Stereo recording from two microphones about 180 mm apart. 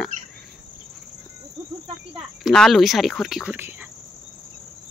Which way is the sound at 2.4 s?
Centre (ahead or behind).